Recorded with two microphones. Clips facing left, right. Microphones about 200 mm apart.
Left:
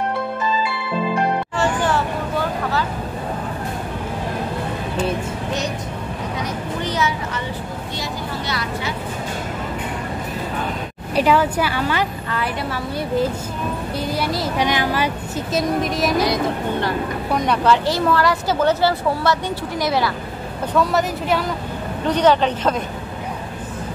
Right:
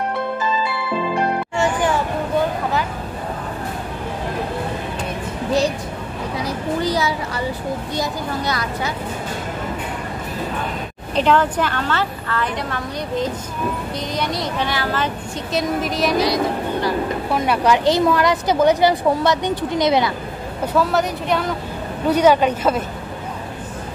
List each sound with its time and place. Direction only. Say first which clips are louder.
1.6 s music: right 2 dB; 10° right (ahead or behind)
6.3 s a woman's voice: right 5 dB; 35° right (ahead or behind)
8.5 s speech: right 2 dB; 45° right (ahead or behind)
11.1 s a woman's voice: even; 10° left (ahead or behind)
14.7 s a woman's voice: left 2 dB; 15° left (ahead or behind)
15.5 s a woman's voice: left 1 dB; centre (ahead or behind)
17.3 s a woman's voice: left 1 dB; 5° right (ahead or behind)
17.8 s a woman's voice: right 2 dB; 15° right (ahead or behind)
20.7 s a woman's voice: even; centre (ahead or behind)